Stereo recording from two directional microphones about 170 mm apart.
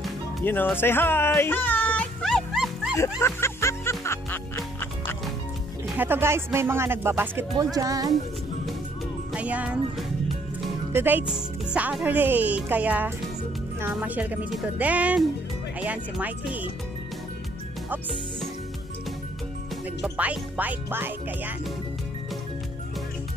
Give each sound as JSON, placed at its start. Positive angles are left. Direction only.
{"t": 0.4, "sound": "music", "side_deg": 10}
{"t": 3.2, "sound": "music", "side_deg": 15}
{"t": 5.9, "sound": "speech", "side_deg": -10}
{"t": 9.3, "sound": "speech", "side_deg": -10}
{"t": 20.0, "sound": "speech", "side_deg": -10}